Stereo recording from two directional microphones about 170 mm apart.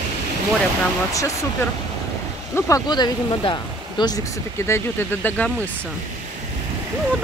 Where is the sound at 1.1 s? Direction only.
20° left (ahead or behind).